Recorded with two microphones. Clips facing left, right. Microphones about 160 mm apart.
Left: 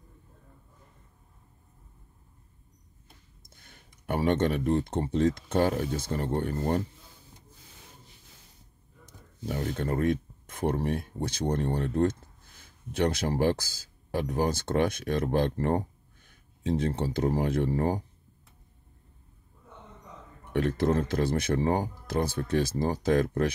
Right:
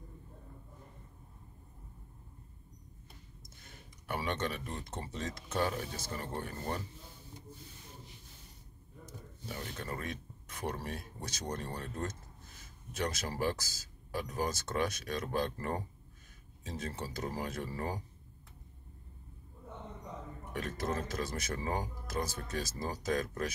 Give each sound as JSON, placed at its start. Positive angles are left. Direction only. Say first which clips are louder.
{"t": 4.0, "sound": "speech", "louder": "left 10 dB", "side_deg": 50}
{"t": 9.5, "sound": "speech", "louder": "left 11 dB", "side_deg": 50}
{"t": 12.9, "sound": "speech", "louder": "left 10 dB", "side_deg": 60}
{"t": 20.5, "sound": "speech", "louder": "left 11 dB", "side_deg": 60}